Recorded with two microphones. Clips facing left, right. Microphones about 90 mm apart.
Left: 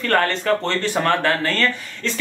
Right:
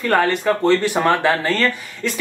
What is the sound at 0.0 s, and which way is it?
Speech, 10° right (ahead or behind).